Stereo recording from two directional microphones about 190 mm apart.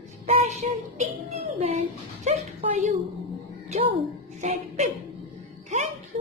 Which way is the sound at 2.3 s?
35° right (ahead or behind).